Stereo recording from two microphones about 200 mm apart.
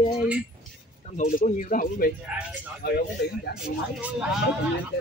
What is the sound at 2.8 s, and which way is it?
Speech, 55° left (ahead or behind).